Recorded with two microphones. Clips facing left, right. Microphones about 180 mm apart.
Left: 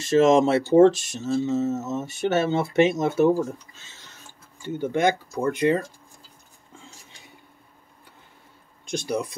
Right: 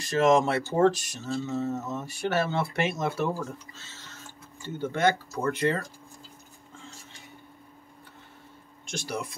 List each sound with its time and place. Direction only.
0.0 s speech: 25° left (ahead or behind)
8.9 s speech: 20° left (ahead or behind)